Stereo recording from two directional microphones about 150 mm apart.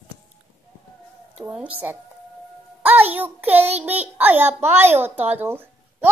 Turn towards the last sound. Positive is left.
turn(degrees=-15)  # may be behind; listen again after turning